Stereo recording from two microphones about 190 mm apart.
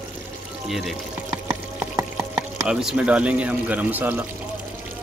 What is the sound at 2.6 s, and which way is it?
Speech, 5° right (ahead or behind).